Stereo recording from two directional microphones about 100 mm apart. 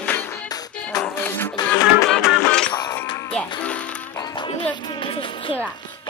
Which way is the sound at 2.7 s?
40° left (ahead or behind).